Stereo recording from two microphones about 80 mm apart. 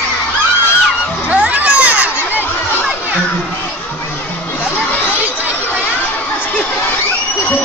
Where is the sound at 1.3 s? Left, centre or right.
Centre.